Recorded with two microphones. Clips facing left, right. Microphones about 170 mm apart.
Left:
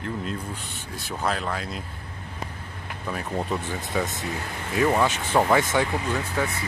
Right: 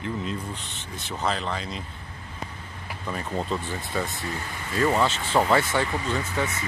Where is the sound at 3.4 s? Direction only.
15° left (ahead or behind).